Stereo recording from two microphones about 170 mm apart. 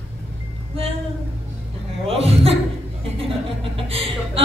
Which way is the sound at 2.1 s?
35° right (ahead or behind).